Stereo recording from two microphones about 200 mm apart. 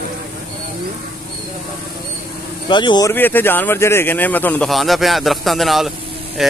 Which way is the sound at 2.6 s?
25° left (ahead or behind).